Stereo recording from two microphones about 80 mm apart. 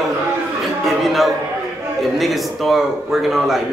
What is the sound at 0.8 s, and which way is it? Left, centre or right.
Speech, centre.